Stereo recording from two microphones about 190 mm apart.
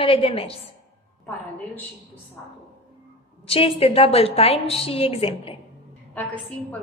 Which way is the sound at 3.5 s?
30° left (ahead or behind).